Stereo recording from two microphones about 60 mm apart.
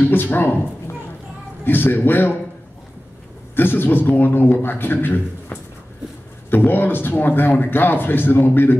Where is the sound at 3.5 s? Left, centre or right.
Left.